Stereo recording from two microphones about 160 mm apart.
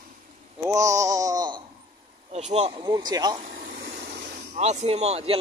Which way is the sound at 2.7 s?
25° right (ahead or behind).